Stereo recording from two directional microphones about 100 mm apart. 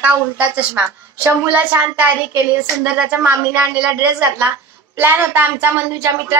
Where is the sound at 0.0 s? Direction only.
15° right (ahead or behind).